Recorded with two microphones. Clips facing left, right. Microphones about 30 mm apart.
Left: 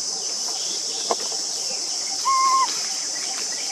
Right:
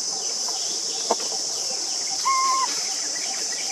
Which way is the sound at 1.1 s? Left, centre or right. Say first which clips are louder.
Right 1 dB; left.